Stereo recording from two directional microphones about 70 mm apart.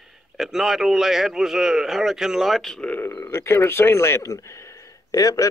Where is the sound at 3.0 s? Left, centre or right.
Left.